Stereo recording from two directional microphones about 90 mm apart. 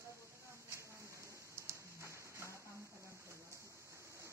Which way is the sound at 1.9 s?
30° right (ahead or behind).